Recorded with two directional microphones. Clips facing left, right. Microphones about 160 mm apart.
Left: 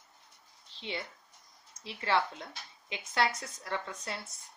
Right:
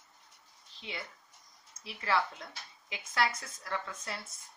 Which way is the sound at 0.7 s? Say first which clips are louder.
Left 4 dB; 25° left (ahead or behind).